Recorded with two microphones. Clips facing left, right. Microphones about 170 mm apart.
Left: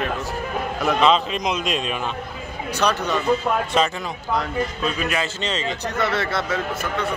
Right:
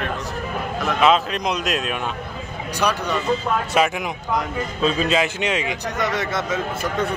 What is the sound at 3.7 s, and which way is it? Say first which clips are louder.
Speech: right 1 dB; 10° right (ahead or behind).